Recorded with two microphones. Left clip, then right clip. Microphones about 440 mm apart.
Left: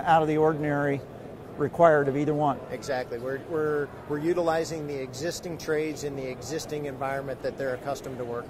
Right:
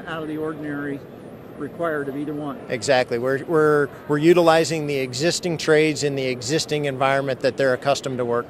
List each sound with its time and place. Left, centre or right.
0.0 s speech: left
2.7 s speech: right